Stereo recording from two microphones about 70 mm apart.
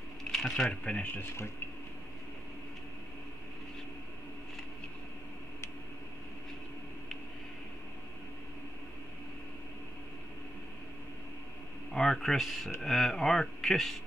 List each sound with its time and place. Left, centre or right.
0.3 s speech: centre
1.1 s speech: left
11.9 s speech: centre